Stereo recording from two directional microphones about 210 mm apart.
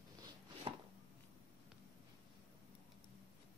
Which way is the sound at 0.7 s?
25° right (ahead or behind).